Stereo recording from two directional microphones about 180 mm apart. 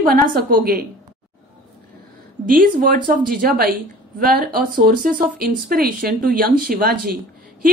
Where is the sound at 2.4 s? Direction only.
50° right (ahead or behind).